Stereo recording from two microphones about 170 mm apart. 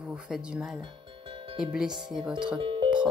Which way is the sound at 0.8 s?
30° right (ahead or behind).